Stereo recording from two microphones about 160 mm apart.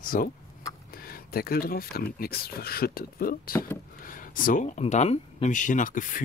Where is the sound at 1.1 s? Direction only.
70° left (ahead or behind); by 4.8 s 55° left (ahead or behind).